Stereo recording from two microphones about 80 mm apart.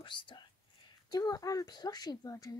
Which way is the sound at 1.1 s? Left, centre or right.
Left.